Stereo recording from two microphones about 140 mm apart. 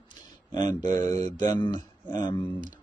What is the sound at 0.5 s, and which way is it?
Speech, 30° left (ahead or behind).